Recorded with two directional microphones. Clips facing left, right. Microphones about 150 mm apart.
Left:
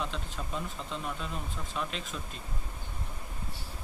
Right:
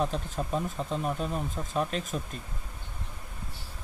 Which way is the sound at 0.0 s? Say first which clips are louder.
Right 7 dB; 45° right (ahead or behind).